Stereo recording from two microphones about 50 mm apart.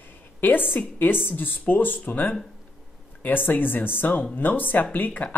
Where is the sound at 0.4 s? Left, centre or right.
Left.